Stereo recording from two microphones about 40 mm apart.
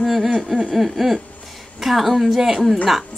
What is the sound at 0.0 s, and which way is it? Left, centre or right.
Speech, centre.